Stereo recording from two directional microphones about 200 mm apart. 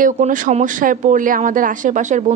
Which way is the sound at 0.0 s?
40° right (ahead or behind).